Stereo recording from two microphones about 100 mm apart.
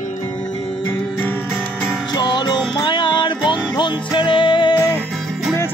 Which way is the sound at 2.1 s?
50° left (ahead or behind).